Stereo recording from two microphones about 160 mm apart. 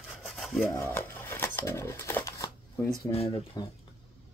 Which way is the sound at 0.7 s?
15° left (ahead or behind).